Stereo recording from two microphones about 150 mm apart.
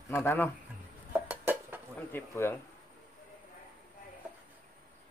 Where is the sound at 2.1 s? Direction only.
15° left (ahead or behind).